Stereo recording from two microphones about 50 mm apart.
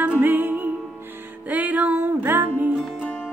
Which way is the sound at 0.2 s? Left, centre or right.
Right.